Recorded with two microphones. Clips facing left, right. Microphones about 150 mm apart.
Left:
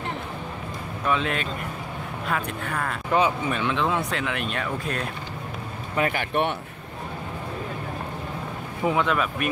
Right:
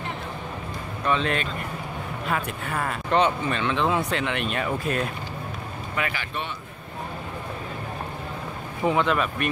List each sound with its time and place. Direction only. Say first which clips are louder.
1.0 s speech: right 1 dB; 5° left (ahead or behind)
3.1 s speech: even; 5° left (ahead or behind)
5.9 s speech: left 5 dB; 40° left (ahead or behind)
8.8 s speech: right 1 dB; centre (ahead or behind)